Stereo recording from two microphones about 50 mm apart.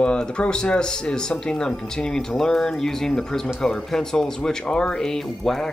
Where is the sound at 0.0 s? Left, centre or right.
Centre.